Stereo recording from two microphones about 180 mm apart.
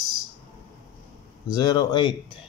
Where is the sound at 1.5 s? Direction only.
20° left (ahead or behind).